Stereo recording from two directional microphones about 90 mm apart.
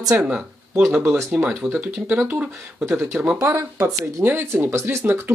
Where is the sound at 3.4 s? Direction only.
30° right (ahead or behind).